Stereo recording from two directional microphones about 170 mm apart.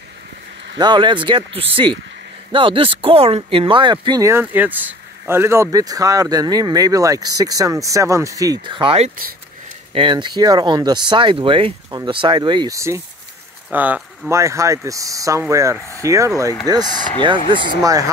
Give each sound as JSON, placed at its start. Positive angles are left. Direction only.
{"t": 0.7, "sound": "speech", "side_deg": -25}